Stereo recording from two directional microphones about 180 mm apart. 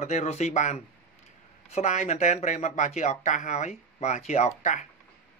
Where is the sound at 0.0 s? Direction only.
35° left (ahead or behind).